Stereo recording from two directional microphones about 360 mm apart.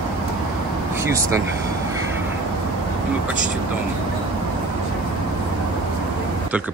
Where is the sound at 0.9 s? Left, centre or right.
Centre.